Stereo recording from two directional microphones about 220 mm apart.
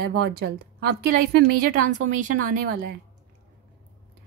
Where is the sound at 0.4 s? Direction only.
50° right (ahead or behind).